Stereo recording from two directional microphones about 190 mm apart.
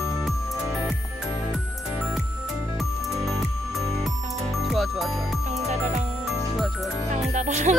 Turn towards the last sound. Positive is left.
turn(degrees=-40)  # may be behind; listen again after turning